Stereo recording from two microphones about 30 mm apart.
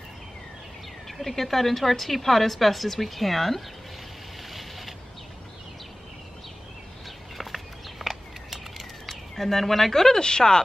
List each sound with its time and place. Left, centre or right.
1.2 s a woman's voice: centre
4.5 s boat: centre
7.3 s a sound: centre
9.3 s a woman's voice: centre
10.2 s speech: left